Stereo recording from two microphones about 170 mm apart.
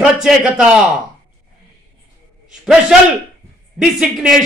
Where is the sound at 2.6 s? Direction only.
5° right (ahead or behind).